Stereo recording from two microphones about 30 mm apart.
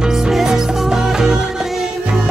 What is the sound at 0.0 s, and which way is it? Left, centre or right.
Music, centre.